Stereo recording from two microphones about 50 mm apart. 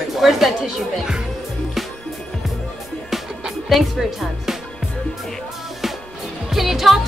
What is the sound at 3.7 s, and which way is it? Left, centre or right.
Speech, centre.